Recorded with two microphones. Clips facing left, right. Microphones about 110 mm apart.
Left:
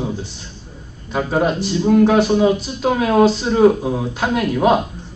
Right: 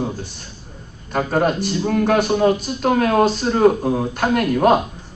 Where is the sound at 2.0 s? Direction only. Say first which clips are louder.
Left 2 dB; 50° right (ahead or behind).